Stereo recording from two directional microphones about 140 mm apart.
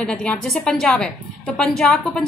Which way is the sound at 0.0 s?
5° left (ahead or behind).